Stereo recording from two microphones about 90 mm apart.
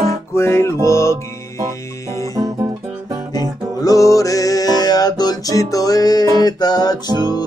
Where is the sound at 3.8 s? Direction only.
40° left (ahead or behind).